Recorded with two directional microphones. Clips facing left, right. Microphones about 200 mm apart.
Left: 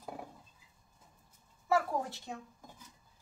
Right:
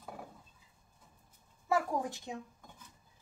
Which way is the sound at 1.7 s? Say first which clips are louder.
Left 1 dB; 15° right (ahead or behind).